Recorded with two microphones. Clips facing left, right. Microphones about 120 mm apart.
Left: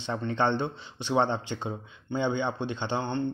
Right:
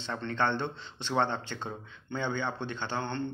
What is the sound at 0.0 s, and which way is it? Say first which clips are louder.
A man's voice: left 3 dB; 15° left (ahead or behind).